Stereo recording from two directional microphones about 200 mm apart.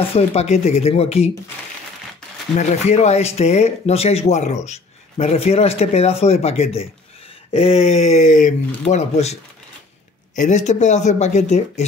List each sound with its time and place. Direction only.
0.1 s speech: 30° left (ahead or behind)
2.5 s speech: 35° left (ahead or behind)